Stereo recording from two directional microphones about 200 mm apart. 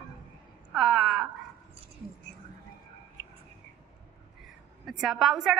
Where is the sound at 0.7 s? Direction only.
Centre (ahead or behind).